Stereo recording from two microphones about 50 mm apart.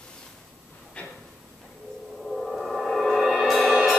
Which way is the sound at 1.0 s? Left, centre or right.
Left.